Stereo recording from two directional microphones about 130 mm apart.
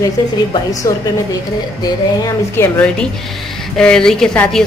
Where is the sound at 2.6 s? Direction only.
20° left (ahead or behind).